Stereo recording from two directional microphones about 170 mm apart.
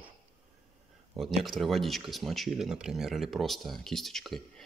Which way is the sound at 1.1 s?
Centre (ahead or behind).